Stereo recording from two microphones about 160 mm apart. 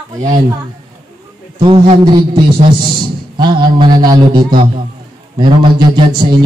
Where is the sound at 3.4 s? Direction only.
30° right (ahead or behind).